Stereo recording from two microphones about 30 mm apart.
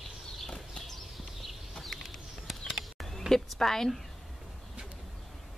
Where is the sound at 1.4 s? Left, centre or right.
Centre.